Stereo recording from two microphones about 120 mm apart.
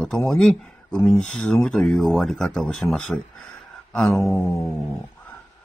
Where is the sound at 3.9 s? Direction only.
5° left (ahead or behind).